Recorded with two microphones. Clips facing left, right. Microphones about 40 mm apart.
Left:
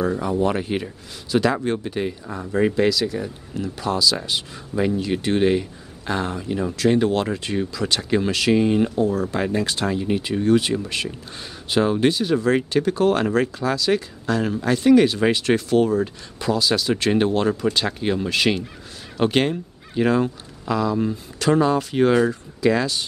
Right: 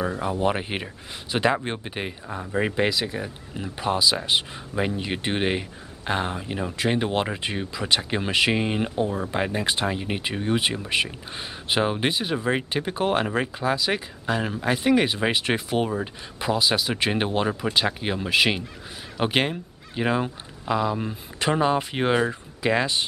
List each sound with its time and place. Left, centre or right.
0.2 s speech: right